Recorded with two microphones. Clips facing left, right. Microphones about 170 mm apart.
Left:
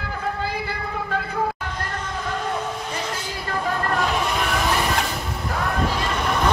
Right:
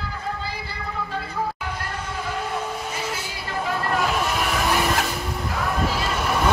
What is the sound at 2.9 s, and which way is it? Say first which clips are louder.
Vehicle: left 1 dB; 5° right (ahead or behind).